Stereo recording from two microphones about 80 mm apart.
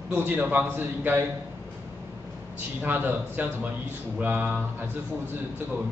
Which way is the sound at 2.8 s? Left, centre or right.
Right.